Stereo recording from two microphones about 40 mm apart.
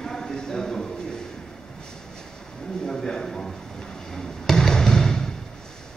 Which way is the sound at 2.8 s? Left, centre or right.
Centre.